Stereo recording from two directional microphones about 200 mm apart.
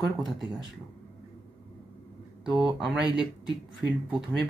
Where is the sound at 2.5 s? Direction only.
5° right (ahead or behind).